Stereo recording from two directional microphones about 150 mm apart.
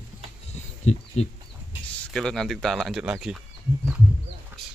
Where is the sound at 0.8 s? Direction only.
50° left (ahead or behind).